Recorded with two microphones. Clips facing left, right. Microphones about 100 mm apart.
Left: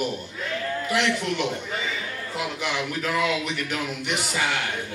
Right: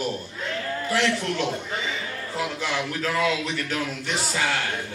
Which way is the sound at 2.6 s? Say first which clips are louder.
Even; 15° left (ahead or behind).